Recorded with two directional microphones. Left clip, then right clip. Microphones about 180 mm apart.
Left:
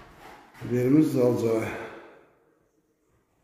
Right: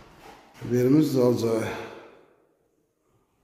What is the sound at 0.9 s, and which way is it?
Speech, 20° right (ahead or behind).